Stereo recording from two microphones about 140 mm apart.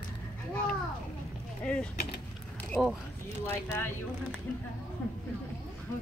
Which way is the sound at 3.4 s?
15° left (ahead or behind).